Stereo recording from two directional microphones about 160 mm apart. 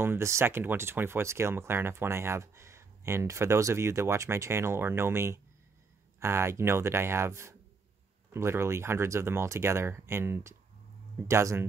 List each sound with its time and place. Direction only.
0.0 s speech: 15° right (ahead or behind)